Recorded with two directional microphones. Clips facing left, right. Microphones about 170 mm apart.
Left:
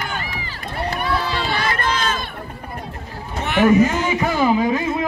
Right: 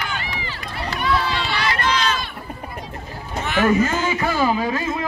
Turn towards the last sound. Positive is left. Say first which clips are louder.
# left 3 dB
turn(degrees=15)  # may be behind; listen again after turning